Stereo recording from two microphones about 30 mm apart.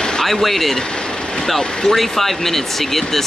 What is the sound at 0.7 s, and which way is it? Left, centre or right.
Vehicle, left.